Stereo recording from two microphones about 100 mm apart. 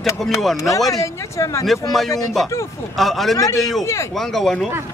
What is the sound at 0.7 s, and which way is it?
Speech, 35° left (ahead or behind).